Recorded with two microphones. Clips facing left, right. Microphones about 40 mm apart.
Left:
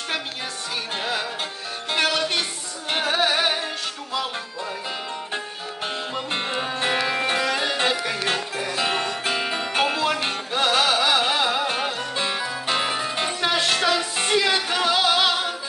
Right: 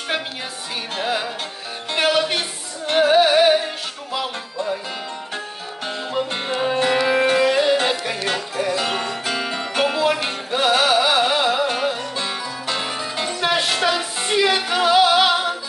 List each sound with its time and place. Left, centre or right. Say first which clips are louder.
1.0 s music: right 5 dB; centre
6.8 s music: right 4 dB; centre
7.3 s music: right 6 dB; centre
7.7 s music: right 4 dB; centre
8.0 s music: right 1 dB; centre
8.7 s music: right 1 dB; centre
9.9 s music: right 3 dB; centre
11.6 s music: right 4 dB; centre
12.2 s music: left 1 dB; centre
13.4 s music: right 3 dB; centre